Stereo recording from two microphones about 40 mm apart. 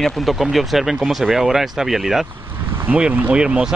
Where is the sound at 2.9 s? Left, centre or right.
Right.